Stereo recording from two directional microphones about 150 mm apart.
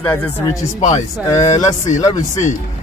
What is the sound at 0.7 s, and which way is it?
Speech, 50° left (ahead or behind).